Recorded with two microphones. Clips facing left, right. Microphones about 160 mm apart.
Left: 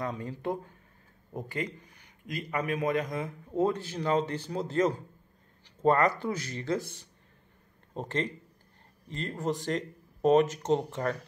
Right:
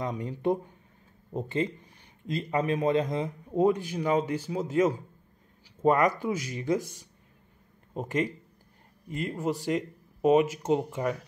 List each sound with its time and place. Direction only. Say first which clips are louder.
0.0 s speech: right 4 dB; 20° right (ahead or behind)